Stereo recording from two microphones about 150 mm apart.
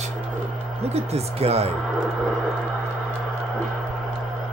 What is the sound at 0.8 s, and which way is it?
Speech, 45° right (ahead or behind).